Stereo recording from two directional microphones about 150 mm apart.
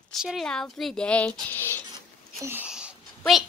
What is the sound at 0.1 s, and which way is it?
Speech, centre (ahead or behind).